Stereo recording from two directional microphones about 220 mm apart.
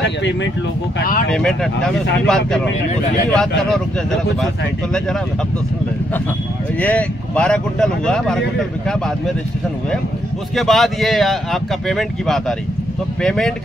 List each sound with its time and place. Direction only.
0.0 s a sound: 55° left (ahead or behind)
1.3 s speech: 5° left (ahead or behind)
6.8 s speech: 5° left (ahead or behind)
10.5 s speech: centre (ahead or behind)